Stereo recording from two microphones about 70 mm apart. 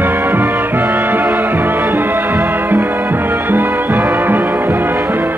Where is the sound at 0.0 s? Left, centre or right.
Right.